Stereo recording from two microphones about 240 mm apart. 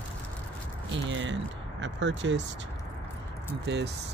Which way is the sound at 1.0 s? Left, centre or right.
Right.